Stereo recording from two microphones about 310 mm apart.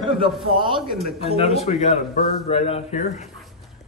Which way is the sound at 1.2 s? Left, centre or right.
Centre.